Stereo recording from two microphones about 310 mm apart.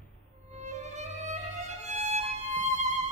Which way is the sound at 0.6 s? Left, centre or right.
Right.